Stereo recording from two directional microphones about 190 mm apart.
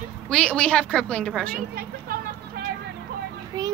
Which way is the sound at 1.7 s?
50° right (ahead or behind).